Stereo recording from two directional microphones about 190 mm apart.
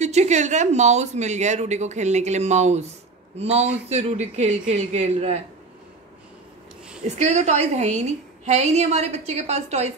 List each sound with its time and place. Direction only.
0.0 s speech: 35° right (ahead or behind)
7.1 s speech: 35° right (ahead or behind)